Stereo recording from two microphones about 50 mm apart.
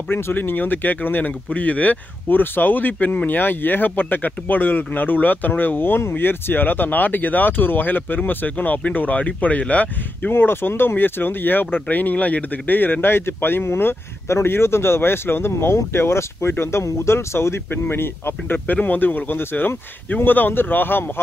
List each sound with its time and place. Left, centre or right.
0.1 s speech: left
10.3 s speech: left